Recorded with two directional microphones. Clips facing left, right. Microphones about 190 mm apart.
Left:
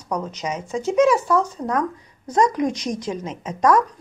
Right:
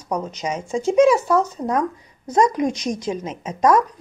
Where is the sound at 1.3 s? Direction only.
25° right (ahead or behind).